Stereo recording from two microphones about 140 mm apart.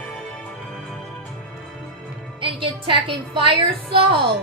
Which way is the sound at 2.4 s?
35° right (ahead or behind).